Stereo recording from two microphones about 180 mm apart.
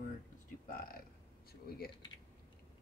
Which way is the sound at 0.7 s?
55° left (ahead or behind).